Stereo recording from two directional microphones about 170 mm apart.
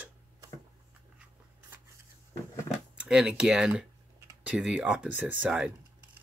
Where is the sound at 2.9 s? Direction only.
5° right (ahead or behind).